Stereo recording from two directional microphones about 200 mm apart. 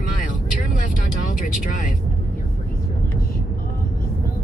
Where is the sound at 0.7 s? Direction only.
40° left (ahead or behind).